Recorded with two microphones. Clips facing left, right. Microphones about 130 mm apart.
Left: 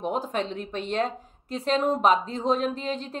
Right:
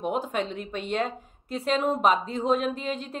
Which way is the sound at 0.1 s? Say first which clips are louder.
Even; 35° left (ahead or behind).